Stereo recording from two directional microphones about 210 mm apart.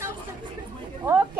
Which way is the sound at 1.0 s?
10° right (ahead or behind).